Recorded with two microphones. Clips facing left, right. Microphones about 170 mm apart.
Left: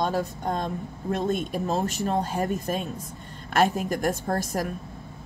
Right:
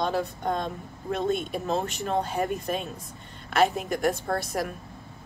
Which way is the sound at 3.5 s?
45° left (ahead or behind).